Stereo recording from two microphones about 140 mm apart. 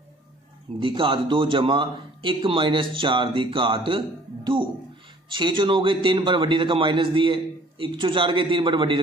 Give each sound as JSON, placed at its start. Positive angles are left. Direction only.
{"t": 0.7, "sound": "a man's voice", "side_deg": -35}
{"t": 5.3, "sound": "a man's voice", "side_deg": -35}